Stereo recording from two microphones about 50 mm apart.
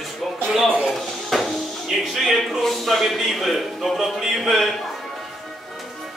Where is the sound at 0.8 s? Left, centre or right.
Centre.